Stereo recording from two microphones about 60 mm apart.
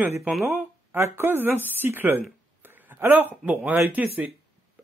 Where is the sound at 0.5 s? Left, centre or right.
Right.